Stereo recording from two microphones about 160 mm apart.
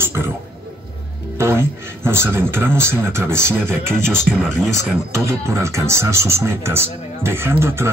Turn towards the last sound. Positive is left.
turn(degrees=-15)  # may be behind; listen again after turning